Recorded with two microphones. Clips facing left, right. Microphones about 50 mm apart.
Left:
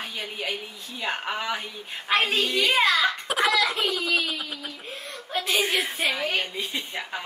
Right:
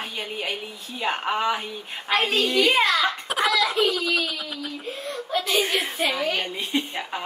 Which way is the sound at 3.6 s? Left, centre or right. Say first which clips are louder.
Right 3 dB; left.